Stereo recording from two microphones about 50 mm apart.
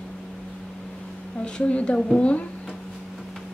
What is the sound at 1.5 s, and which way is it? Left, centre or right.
Speech, left.